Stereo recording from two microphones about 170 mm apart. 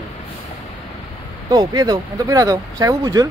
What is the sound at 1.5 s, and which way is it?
Speech, 25° right (ahead or behind).